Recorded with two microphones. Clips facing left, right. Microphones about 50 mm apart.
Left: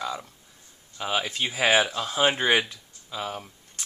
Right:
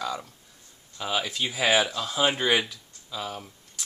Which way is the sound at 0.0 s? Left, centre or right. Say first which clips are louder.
Even; centre.